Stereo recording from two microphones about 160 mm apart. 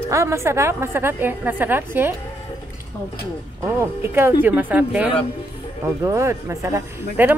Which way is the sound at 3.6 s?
15° right (ahead or behind).